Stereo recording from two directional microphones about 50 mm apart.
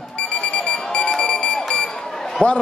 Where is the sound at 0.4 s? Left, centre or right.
Centre.